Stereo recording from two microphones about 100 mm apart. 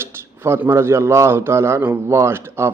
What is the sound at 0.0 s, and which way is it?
Speech, 25° right (ahead or behind).